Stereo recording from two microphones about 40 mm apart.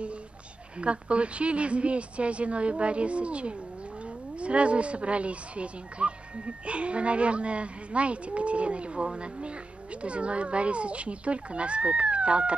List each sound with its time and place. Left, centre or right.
0.7 s speech: right